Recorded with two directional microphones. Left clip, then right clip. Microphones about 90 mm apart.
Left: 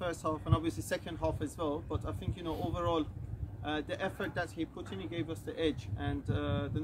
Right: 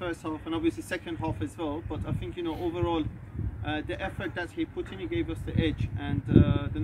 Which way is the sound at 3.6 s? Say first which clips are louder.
Right 3 dB; 60° left (ahead or behind).